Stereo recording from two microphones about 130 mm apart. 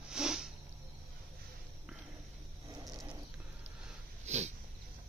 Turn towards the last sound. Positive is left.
turn(degrees=-60)  # may be behind; listen again after turning